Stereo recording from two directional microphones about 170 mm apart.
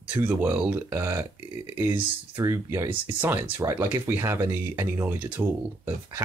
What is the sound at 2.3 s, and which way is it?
Speech, 15° right (ahead or behind).